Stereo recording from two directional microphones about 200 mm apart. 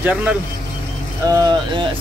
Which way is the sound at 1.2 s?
20° right (ahead or behind).